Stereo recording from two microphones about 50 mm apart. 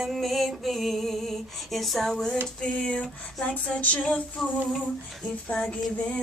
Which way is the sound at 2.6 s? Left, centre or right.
Centre.